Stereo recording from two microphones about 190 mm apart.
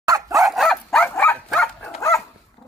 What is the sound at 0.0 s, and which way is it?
Dog, 15° right (ahead or behind).